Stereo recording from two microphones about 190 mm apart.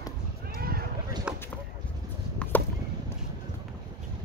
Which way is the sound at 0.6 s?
50° right (ahead or behind).